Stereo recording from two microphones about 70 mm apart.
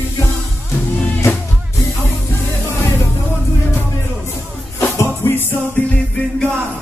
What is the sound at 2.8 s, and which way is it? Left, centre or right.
Music, left.